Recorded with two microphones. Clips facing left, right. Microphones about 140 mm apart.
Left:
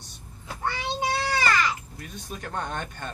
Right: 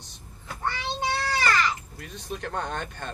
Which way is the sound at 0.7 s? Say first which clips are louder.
Left 2 dB; 15° left (ahead or behind).